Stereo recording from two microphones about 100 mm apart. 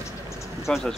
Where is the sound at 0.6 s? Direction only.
Centre (ahead or behind).